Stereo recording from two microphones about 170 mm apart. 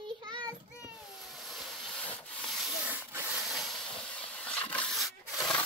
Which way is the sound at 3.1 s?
15° right (ahead or behind).